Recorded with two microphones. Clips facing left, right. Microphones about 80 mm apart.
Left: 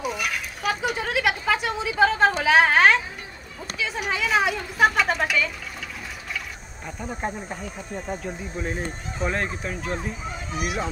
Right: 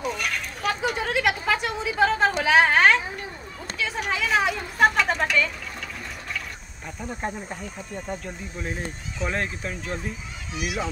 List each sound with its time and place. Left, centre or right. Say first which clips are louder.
0.0 s a sound: even; centre
3.7 s speech: even; centre
7.0 s speech: left 1 dB; centre
10.5 s honk: left 1 dB; left